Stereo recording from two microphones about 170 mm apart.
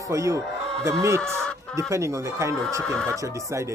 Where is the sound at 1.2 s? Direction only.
5° left (ahead or behind).